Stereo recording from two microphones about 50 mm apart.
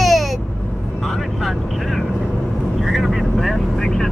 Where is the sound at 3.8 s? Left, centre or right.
Centre.